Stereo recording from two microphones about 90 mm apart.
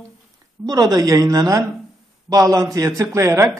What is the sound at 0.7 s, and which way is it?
A man's voice, 45° right (ahead or behind).